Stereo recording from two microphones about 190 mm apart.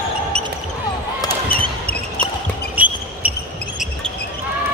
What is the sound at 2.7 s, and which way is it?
Basketball bounce, 10° right (ahead or behind).